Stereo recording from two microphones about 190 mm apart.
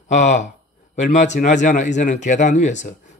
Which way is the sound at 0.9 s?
40° left (ahead or behind).